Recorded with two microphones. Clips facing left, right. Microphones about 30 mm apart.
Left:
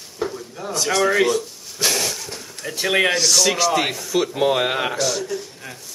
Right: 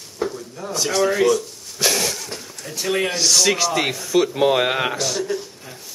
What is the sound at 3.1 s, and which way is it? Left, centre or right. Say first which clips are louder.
Speech: even; centre.